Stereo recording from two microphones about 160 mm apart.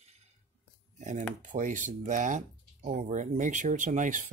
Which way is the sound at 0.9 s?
50° right (ahead or behind).